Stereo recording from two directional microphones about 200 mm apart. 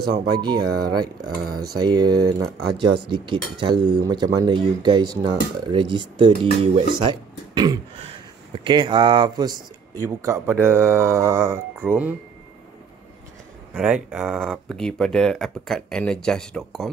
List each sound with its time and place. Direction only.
0.0 s speech: 55° right (ahead or behind)
0.4 s speech: 20° right (ahead or behind)
1.2 s speech: 50° right (ahead or behind)
1.8 s speech: 20° right (ahead or behind)
13.7 s speech: 5° right (ahead or behind)